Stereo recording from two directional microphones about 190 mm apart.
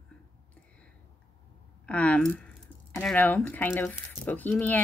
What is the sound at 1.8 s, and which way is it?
Speech, 5° left (ahead or behind).